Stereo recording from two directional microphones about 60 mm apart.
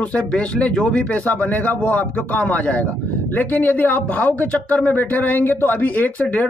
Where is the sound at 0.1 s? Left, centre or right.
Centre.